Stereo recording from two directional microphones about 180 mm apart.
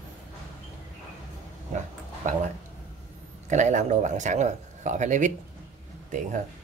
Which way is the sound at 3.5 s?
40° right (ahead or behind).